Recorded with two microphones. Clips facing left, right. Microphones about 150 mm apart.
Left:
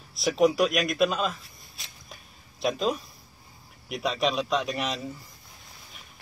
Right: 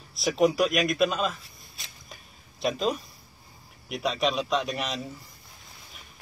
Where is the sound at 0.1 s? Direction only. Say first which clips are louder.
Left 1 dB; centre (ahead or behind).